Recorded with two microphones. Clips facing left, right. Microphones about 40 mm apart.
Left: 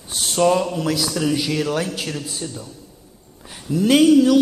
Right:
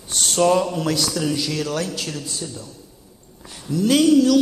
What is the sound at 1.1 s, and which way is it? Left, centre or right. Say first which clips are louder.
A man's voice: left 2 dB; centre.